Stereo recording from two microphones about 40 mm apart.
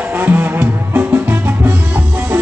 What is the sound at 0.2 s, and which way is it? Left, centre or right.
Music, right.